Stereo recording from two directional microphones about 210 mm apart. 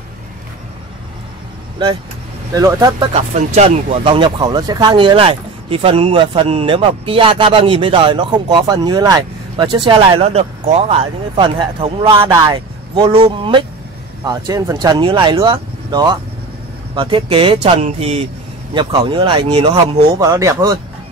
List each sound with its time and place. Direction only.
2.5 s speech: 15° right (ahead or behind)
3.1 s speech: 35° right (ahead or behind); by 20.8 s 15° right (ahead or behind)